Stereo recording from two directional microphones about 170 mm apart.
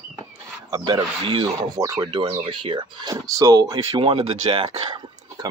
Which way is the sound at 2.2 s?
35° right (ahead or behind).